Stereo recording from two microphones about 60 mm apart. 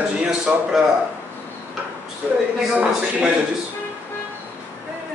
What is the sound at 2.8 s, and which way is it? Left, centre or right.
Speech, centre.